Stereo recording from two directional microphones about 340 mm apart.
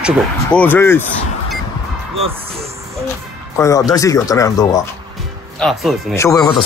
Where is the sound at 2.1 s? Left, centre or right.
Centre.